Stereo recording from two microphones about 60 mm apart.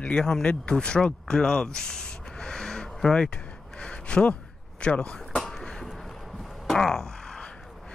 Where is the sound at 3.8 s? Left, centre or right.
Centre.